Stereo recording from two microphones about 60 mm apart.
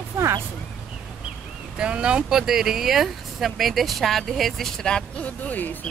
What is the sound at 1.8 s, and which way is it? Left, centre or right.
Speech, centre.